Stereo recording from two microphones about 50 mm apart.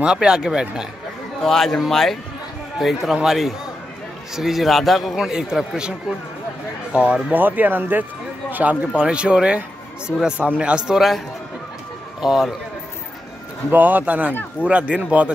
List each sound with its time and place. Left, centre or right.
0.0 s speech: centre
1.4 s a man's voice: centre
5.1 s speech: centre
6.9 s speech: right
7.3 s speech: right
8.5 s a sound: right
8.9 s speech: centre
11.0 s a man's voice: centre
13.7 s speech: right